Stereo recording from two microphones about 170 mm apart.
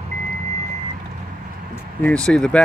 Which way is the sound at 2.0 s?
5° left (ahead or behind).